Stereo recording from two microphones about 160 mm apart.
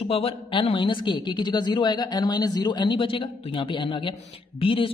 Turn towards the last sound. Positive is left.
turn(degrees=35)  # may be behind; listen again after turning